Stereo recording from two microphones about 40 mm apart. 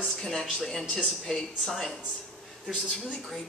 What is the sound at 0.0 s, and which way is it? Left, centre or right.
Speech, centre.